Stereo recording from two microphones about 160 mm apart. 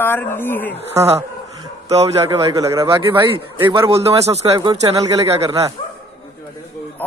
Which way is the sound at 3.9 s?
40° right (ahead or behind).